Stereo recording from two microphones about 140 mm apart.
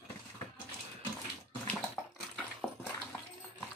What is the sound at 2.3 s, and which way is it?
Dog, centre (ahead or behind).